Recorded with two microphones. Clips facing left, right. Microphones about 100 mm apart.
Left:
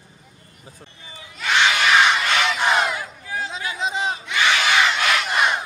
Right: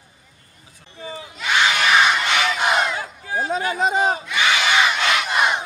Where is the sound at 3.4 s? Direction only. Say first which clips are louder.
Right 7 dB; 45° right (ahead or behind).